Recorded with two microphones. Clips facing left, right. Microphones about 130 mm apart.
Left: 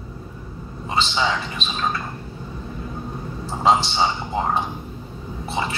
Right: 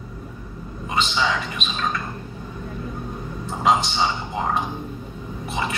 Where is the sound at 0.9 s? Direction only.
30° left (ahead or behind).